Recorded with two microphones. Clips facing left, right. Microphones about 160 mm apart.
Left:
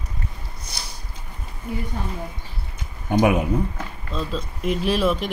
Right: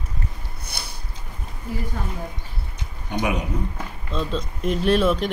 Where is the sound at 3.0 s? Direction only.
50° left (ahead or behind).